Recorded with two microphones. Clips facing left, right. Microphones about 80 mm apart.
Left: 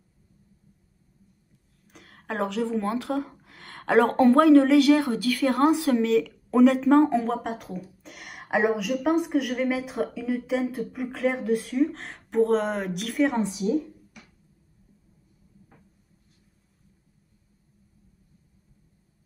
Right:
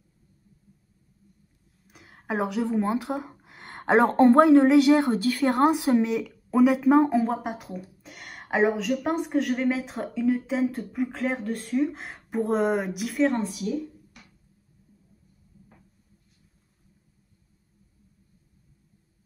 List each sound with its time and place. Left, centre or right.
1.9 s a woman's voice: centre
6.5 s speech: centre
13.1 s speech: centre
13.4 s a woman's voice: left